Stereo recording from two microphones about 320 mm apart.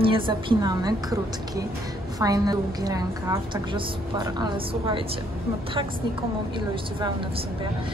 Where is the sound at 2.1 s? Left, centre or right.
Centre.